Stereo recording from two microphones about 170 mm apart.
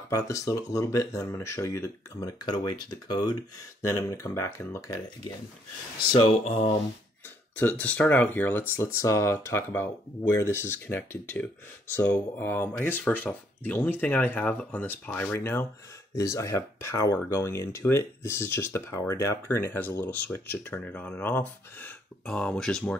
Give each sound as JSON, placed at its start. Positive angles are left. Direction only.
{"t": 0.1, "sound": "speech", "side_deg": 20}
{"t": 6.3, "sound": "speech", "side_deg": 40}
{"t": 7.5, "sound": "speech", "side_deg": 10}